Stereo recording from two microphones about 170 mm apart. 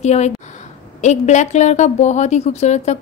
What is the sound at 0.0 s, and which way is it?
A woman's voice, 40° left (ahead or behind).